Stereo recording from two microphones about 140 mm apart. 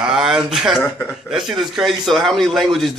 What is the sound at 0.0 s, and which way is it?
Speech, 5° right (ahead or behind).